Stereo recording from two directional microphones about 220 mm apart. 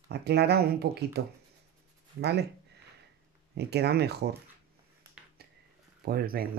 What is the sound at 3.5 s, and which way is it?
Speech, 50° right (ahead or behind).